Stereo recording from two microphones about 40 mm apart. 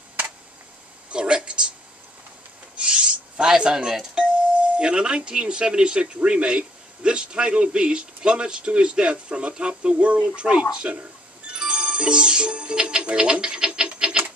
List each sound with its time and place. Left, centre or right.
1.1 s speech: right
2.8 s owl: right
3.4 s a man's voice: centre
9.9 s a man's voice: right
11.4 s music: right